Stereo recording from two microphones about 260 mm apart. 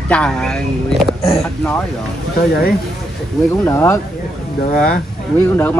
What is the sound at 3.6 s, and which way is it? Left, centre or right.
Speech, centre.